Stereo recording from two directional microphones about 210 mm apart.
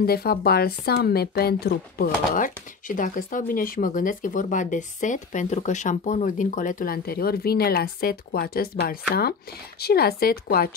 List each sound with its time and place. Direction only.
0.0 s speech: 45° left (ahead or behind)